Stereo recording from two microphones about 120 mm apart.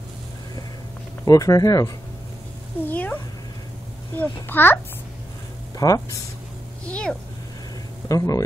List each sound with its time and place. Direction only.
1.2 s speech: 30° left (ahead or behind)
2.9 s speech: 15° left (ahead or behind)
4.2 s a child's voice: 15° left (ahead or behind)
5.8 s speech: 30° left (ahead or behind)
6.9 s a sound: 10° left (ahead or behind)
8.1 s speech: 30° left (ahead or behind)